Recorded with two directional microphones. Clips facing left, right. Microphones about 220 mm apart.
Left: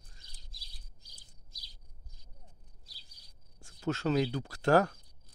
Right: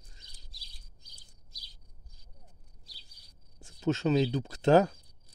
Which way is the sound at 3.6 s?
20° right (ahead or behind).